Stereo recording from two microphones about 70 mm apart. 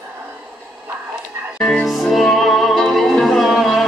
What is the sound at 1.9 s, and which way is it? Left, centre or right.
Music, centre.